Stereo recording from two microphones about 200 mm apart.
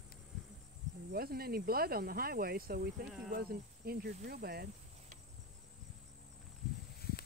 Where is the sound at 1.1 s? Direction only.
50° right (ahead or behind).